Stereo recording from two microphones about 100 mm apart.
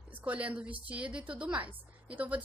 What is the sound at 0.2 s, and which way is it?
A woman's voice, 15° right (ahead or behind).